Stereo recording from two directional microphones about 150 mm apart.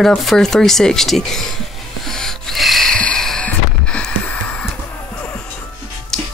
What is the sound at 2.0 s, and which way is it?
Wheeze, centre (ahead or behind).